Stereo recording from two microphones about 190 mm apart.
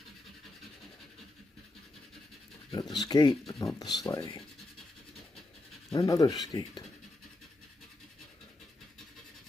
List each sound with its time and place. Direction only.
2.7 s speech: 20° left (ahead or behind)
5.9 s speech: 20° left (ahead or behind)